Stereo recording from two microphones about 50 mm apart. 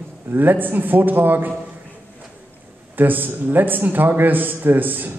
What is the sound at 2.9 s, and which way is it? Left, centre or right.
A man's voice, right.